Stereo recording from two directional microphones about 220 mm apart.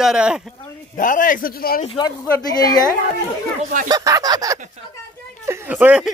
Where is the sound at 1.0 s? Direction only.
35° left (ahead or behind).